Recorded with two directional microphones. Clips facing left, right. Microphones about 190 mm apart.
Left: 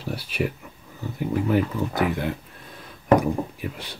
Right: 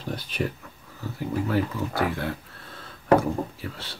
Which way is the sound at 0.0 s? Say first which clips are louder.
Left 2 dB; 10° left (ahead or behind).